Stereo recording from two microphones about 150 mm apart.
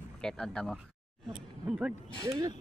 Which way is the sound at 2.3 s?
20° right (ahead or behind).